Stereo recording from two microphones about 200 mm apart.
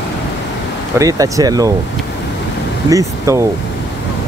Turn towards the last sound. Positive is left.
turn(degrees=-15)  # may be behind; listen again after turning